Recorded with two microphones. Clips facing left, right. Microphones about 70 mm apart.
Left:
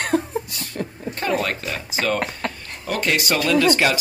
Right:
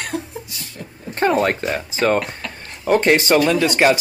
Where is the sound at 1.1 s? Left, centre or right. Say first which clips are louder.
Right 6 dB; right.